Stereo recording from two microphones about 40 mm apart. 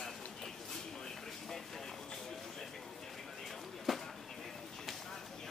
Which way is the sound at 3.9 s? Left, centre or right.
Centre.